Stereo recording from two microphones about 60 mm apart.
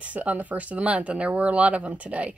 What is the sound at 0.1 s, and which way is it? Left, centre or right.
Speech, right.